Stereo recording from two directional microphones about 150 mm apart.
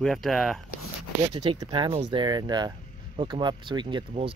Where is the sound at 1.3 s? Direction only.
30° right (ahead or behind).